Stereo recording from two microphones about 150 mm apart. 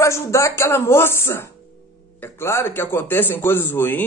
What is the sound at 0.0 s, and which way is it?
Speech, 20° left (ahead or behind).